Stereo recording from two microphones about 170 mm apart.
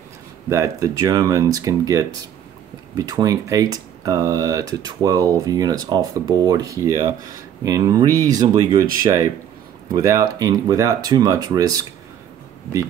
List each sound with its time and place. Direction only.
0.5 s speech: 20° right (ahead or behind)